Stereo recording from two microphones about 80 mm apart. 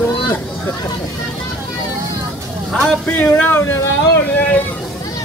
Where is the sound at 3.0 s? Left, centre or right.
Left.